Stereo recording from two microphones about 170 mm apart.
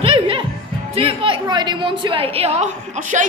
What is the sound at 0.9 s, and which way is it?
A woman's voice, 30° right (ahead or behind).